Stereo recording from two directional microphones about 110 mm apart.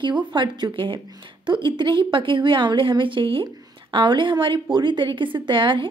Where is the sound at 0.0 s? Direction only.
45° right (ahead or behind).